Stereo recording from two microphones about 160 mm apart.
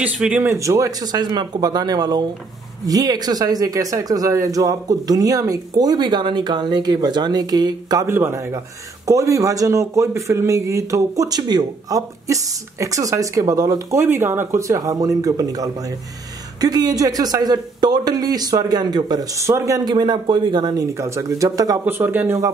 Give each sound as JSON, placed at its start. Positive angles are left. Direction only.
{"t": 0.0, "sound": "speech", "side_deg": -10}